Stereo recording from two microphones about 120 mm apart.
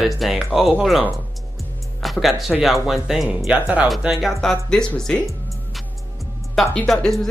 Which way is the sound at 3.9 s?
Centre (ahead or behind).